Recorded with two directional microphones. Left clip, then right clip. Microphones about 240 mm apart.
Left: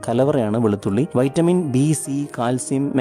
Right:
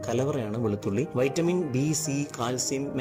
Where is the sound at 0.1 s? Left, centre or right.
Left.